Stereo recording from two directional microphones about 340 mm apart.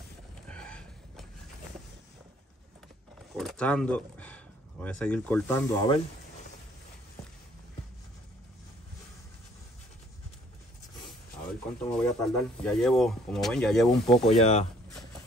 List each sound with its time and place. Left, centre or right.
0.5 s a sound: centre
3.3 s speech: centre
11.8 s speech: centre
14.0 s speech: centre